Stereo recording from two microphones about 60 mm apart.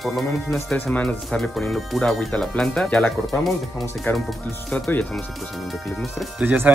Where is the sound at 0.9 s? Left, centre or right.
Left.